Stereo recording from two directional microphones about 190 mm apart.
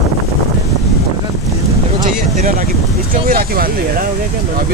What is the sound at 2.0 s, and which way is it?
Vehicle, 35° right (ahead or behind).